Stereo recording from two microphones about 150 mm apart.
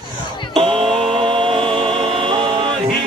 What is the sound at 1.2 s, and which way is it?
Music, 35° right (ahead or behind).